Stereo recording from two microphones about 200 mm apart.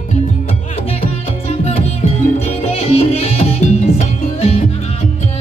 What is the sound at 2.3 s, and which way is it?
Music, 30° left (ahead or behind).